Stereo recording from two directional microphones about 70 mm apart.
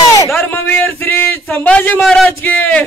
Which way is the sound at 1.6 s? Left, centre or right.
Left.